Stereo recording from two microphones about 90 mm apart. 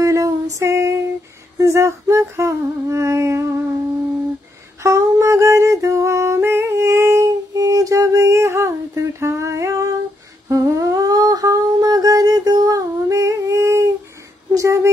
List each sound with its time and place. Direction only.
0.0 s female singing: 40° right (ahead or behind)
1.6 s humming: 30° right (ahead or behind)
4.8 s humming: 35° right (ahead or behind)
14.5 s a sound: 35° right (ahead or behind)